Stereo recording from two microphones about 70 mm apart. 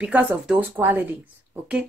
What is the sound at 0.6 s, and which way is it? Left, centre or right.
Speech, right.